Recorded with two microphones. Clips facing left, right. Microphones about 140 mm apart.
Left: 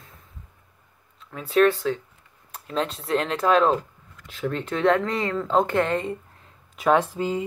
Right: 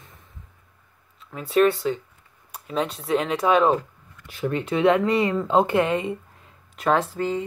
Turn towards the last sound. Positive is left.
turn(degrees=10)  # may be behind; listen again after turning